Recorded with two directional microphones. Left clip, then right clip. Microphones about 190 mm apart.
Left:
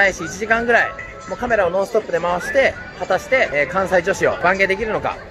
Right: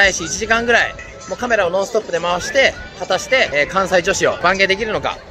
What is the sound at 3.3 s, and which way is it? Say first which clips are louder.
Speech: right 3 dB; 5° right (ahead or behind).